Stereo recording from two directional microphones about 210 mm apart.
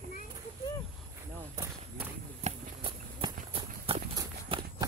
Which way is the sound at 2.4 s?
25° right (ahead or behind).